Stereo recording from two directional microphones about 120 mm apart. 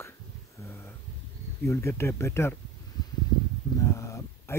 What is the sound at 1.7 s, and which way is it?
Speech, 25° left (ahead or behind).